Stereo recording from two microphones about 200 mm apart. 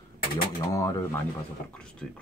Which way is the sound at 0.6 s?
15° left (ahead or behind).